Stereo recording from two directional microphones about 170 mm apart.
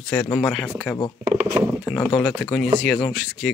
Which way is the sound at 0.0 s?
5° left (ahead or behind).